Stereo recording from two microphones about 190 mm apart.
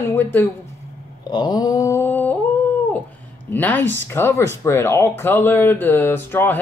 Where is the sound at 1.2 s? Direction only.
20° left (ahead or behind).